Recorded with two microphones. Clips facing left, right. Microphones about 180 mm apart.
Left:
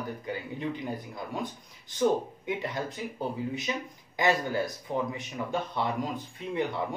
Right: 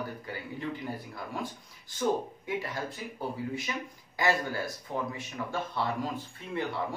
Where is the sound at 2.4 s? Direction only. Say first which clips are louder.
Left 2 dB; 20° left (ahead or behind).